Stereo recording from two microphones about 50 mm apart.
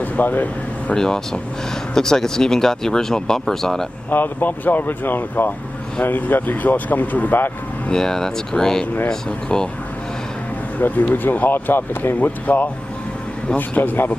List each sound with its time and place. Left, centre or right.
0.0 s a sound: left
0.9 s speech: centre
4.1 s speech: left
7.9 s speech: centre
10.8 s speech: left